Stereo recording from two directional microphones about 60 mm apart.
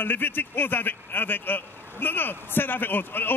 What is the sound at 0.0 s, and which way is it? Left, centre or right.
Speech, left.